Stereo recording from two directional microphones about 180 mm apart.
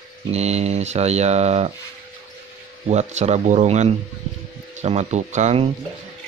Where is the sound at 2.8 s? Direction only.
40° right (ahead or behind).